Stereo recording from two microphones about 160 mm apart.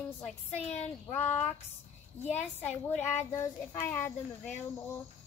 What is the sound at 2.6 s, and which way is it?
Speech, 10° left (ahead or behind).